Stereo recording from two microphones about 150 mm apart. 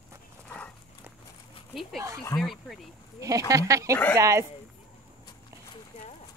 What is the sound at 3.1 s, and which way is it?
Speech, 20° right (ahead or behind).